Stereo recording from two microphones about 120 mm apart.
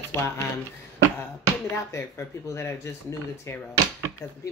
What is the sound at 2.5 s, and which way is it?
Speech, 25° left (ahead or behind).